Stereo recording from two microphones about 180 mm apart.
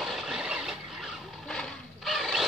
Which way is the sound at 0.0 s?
Centre (ahead or behind).